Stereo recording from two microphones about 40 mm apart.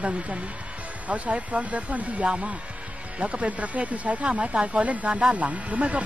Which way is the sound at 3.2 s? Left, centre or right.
Right.